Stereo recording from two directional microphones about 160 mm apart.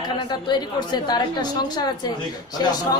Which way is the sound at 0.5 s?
25° left (ahead or behind).